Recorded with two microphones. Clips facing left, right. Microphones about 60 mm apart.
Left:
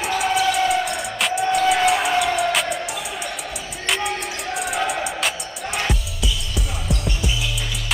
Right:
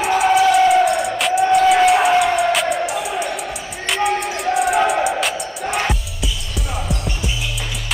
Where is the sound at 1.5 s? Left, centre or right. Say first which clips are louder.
Right 5 dB; centre.